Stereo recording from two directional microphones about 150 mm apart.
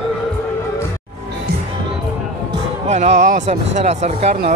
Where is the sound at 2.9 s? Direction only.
50° right (ahead or behind).